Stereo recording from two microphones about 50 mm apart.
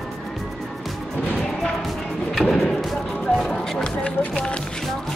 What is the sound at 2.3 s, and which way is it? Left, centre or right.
Speech, centre.